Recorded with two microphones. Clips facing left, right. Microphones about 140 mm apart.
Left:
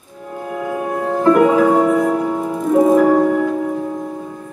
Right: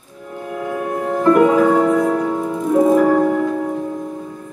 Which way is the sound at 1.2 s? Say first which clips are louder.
Even; 5° left (ahead or behind).